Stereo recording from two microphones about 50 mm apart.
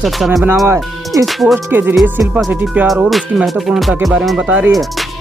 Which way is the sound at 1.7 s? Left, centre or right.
Right.